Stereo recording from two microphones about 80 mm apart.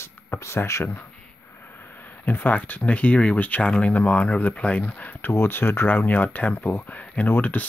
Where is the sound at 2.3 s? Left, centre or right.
Left.